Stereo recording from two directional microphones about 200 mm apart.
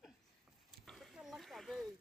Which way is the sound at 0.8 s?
Centre (ahead or behind).